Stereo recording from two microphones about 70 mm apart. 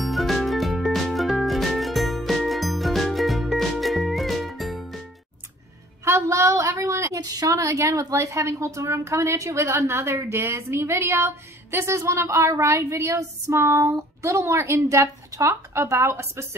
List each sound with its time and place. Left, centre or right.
0.0 s music: centre
6.0 s a sound: right
7.2 s a woman's voice: right